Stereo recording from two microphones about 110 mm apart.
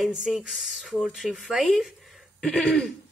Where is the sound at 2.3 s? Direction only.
10° left (ahead or behind).